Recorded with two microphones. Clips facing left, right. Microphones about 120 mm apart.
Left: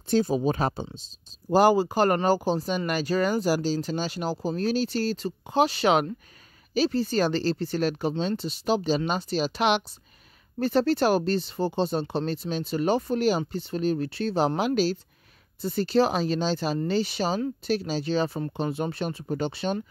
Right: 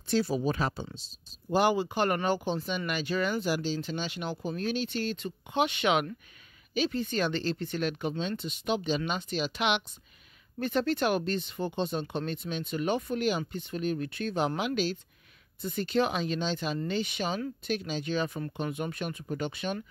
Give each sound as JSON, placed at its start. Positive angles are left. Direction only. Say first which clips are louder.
{"t": 0.1, "sound": "speech", "louder": "left 5 dB", "side_deg": 40}
{"t": 1.5, "sound": "speech", "louder": "left 6 dB", "side_deg": 40}